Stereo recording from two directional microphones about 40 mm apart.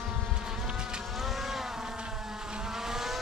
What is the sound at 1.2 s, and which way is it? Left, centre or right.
Vehicle, centre.